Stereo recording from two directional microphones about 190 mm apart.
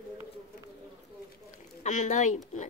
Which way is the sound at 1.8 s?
40° left (ahead or behind).